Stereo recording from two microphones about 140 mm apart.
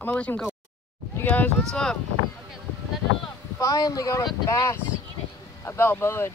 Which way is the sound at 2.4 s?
Centre (ahead or behind).